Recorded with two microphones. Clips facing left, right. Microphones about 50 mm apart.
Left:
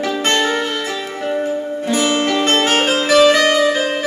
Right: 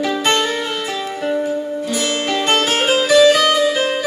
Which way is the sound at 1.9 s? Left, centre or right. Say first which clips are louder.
Left 7 dB; left.